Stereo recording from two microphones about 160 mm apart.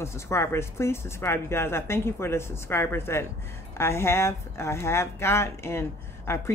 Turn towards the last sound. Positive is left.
turn(degrees=15)  # may be behind; listen again after turning